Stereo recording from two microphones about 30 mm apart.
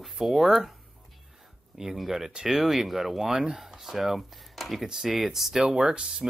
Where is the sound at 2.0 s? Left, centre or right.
Centre.